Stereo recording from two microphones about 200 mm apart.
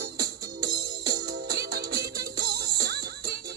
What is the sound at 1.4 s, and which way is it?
Music, 55° right (ahead or behind).